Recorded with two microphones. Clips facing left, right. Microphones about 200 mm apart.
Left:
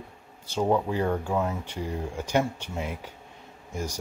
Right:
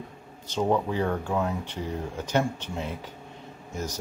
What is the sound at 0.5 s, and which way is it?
Speech, 10° left (ahead or behind).